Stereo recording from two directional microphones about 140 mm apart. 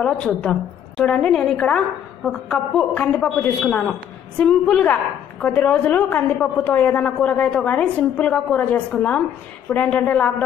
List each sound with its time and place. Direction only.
0.0 s a woman's voice: 5° left (ahead or behind)